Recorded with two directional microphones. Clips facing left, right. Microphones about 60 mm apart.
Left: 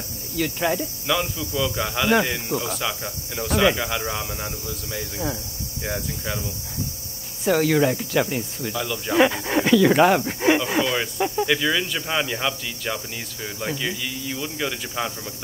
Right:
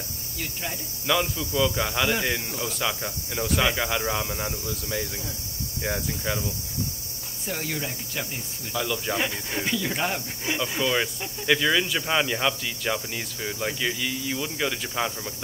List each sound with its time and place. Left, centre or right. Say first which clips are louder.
0.4 s speech: left 11 dB; left
1.0 s speech: right 2 dB; centre
7.4 s speech: left 13 dB; left
8.7 s speech: right 1 dB; centre
9.1 s speech: left 9 dB; left
11.1 s cricket: left 13 dB; left
11.4 s speech: right 5 dB; centre